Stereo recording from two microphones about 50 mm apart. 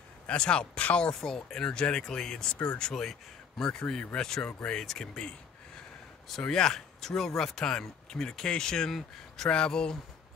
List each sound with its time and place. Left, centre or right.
0.3 s speech: centre
6.4 s speech: centre